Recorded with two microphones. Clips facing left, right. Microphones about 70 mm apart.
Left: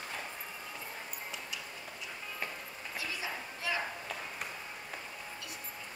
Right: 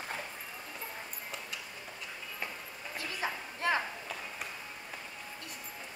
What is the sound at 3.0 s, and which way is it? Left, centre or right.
Clip-clop, right.